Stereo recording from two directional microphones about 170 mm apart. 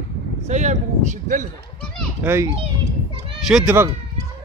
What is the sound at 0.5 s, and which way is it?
Speech, 45° right (ahead or behind).